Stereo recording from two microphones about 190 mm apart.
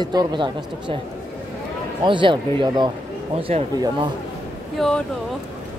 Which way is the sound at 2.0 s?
25° right (ahead or behind).